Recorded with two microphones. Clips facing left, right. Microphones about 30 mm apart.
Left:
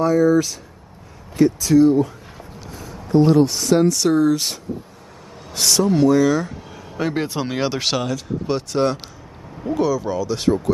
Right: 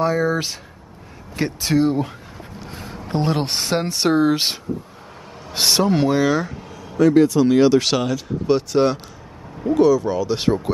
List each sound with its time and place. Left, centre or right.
0.0 s speech: right
2.7 s a sound: right
3.1 s a man's voice: right
7.0 s speech: left; by 7.9 s centre
7.9 s speech: centre
10.0 s speech: centre